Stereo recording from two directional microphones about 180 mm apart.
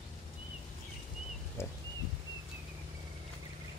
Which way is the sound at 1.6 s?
15° left (ahead or behind).